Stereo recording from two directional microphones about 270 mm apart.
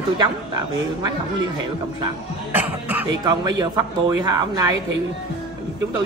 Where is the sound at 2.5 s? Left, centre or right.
Centre.